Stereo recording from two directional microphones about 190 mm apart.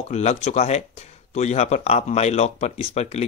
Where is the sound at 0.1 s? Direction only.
35° left (ahead or behind).